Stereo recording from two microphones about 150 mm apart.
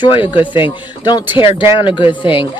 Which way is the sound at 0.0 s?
35° left (ahead or behind).